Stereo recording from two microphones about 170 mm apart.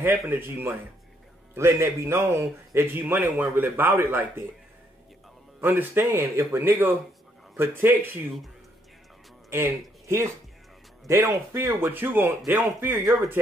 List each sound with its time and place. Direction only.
0.0 s speech: 15° right (ahead or behind)
5.6 s speech: 10° right (ahead or behind)
9.5 s speech: 15° right (ahead or behind)